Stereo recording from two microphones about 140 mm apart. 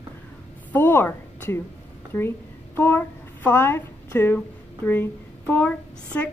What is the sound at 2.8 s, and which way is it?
A child's voice, 15° left (ahead or behind).